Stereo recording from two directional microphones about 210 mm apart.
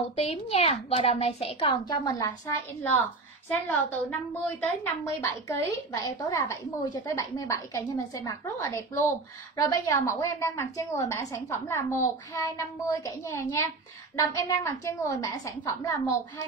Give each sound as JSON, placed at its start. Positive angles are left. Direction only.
{"t": 0.1, "sound": "a child's voice", "side_deg": 30}